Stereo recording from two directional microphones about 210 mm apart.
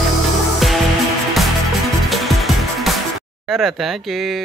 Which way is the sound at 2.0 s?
Centre (ahead or behind).